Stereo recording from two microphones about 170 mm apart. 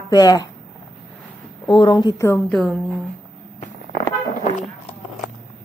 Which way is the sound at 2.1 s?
15° left (ahead or behind).